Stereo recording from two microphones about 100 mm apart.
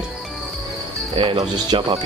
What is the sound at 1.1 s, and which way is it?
Speech, 60° right (ahead or behind).